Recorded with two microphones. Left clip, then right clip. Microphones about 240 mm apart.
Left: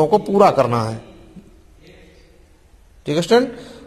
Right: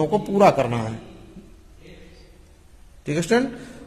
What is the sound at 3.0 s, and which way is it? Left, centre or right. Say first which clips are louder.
Speech: left 6 dB; centre.